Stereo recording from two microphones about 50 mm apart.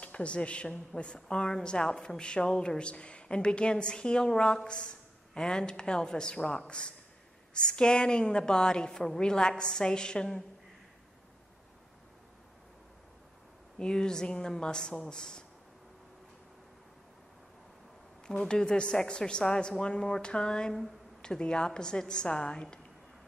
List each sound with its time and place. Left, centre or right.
0.0 s a woman's voice: left
13.7 s a woman's voice: centre
18.2 s a woman's voice: centre